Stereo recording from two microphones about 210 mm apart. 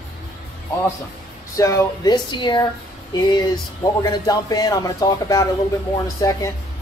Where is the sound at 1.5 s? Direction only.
15° left (ahead or behind).